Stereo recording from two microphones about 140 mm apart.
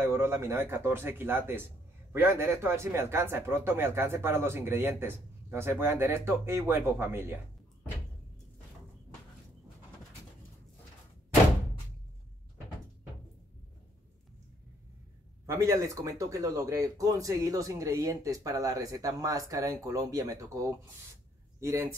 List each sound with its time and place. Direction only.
0.0 s speech: 20° right (ahead or behind)
15.4 s speech: 20° right (ahead or behind)